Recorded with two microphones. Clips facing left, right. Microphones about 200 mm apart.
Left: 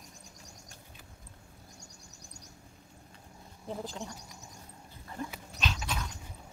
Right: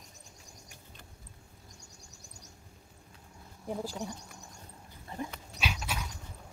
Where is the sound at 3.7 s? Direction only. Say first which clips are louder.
Right 3 dB; 10° right (ahead or behind).